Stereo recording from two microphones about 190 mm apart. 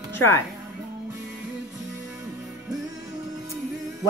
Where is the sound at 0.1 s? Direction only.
15° left (ahead or behind).